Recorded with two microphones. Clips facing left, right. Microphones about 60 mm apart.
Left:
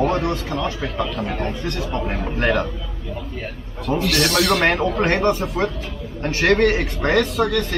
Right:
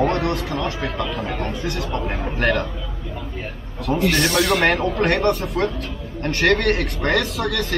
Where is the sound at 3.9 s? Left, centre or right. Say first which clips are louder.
Right 1 dB; centre.